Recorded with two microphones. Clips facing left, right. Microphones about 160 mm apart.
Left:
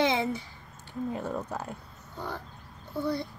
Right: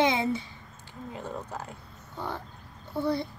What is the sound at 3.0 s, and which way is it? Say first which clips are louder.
Speech: right 2 dB; 55° right (ahead or behind).